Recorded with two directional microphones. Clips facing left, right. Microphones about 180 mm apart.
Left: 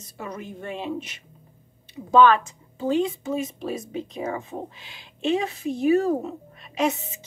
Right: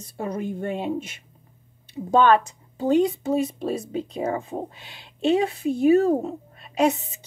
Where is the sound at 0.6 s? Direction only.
45° right (ahead or behind).